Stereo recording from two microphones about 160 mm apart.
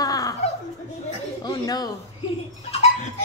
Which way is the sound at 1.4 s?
25° left (ahead or behind).